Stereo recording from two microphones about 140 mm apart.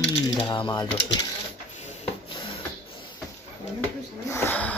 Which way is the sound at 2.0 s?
35° left (ahead or behind).